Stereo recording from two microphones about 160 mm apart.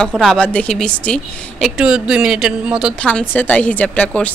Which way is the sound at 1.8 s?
5° right (ahead or behind).